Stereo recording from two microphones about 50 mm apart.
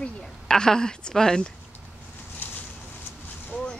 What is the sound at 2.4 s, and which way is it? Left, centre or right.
Boat, left.